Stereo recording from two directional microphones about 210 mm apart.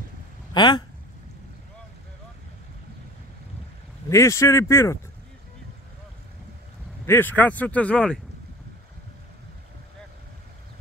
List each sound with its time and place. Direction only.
0.5 s speech: 20° left (ahead or behind)
4.1 s speech: 15° left (ahead or behind)
7.1 s speech: 10° left (ahead or behind)